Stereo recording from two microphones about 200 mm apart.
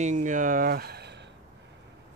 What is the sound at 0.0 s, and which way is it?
Speech, 40° right (ahead or behind).